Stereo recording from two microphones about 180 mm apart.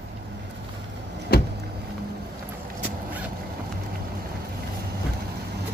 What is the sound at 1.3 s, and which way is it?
Vehicle, 60° left (ahead or behind).